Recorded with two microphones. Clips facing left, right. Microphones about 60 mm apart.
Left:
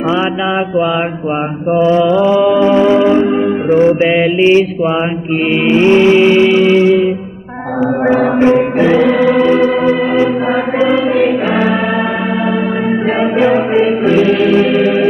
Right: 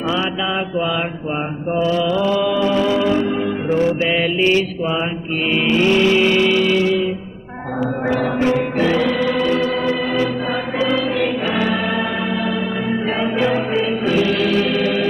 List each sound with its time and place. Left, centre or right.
1.7 s music: left
5.7 s music: left
10.8 s choir: left
13.2 s music: left